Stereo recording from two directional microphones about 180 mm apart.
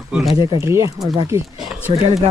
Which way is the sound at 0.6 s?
15° right (ahead or behind).